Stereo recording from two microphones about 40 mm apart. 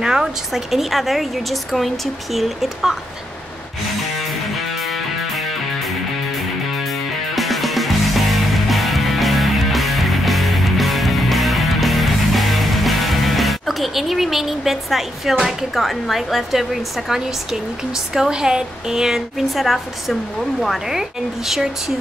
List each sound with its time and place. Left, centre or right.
0.0 s a woman's voice: centre
4.3 s music: centre
15.4 s speech: centre
19.5 s a woman's voice: centre